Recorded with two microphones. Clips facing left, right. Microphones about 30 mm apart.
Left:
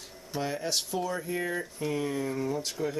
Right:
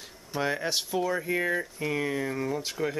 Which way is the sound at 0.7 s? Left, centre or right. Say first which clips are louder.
Right 3 dB; centre.